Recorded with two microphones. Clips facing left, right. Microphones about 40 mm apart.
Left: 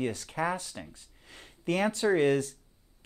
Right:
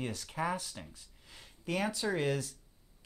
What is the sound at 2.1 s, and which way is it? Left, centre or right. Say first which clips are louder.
Speech: left 8 dB; left.